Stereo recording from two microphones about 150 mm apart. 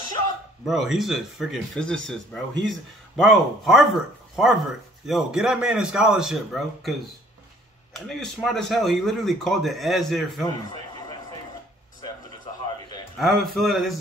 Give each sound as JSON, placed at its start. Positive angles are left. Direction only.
{"t": 0.7, "sound": "speech", "side_deg": 0}
{"t": 7.9, "sound": "speech", "side_deg": 0}
{"t": 10.4, "sound": "a sound", "side_deg": 25}
{"t": 13.2, "sound": "speech", "side_deg": 0}